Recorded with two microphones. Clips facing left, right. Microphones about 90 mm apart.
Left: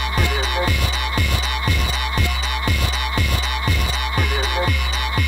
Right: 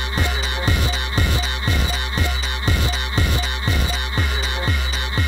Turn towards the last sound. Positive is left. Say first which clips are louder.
# left 4 dB
turn(degrees=-30)  # may be behind; listen again after turning